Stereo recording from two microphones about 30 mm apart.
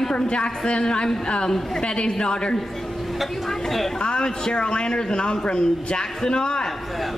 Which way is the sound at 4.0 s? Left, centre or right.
Left.